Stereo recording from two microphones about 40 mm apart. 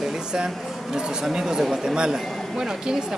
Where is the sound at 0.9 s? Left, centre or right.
Centre.